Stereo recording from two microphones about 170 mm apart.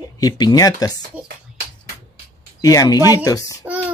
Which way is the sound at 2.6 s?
20° left (ahead or behind).